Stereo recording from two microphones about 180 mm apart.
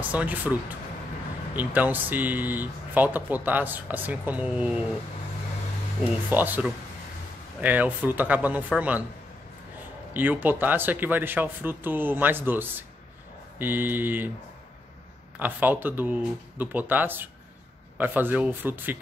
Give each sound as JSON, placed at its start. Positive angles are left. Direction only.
{"t": 0.0, "sound": "speech", "side_deg": -10}
{"t": 6.3, "sound": "speech", "side_deg": -10}
{"t": 10.1, "sound": "speech", "side_deg": -10}
{"t": 15.3, "sound": "speech", "side_deg": -10}